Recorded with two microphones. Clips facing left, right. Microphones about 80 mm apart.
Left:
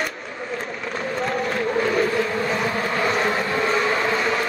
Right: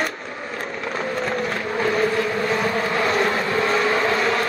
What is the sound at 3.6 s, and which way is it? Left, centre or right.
Vehicle, centre.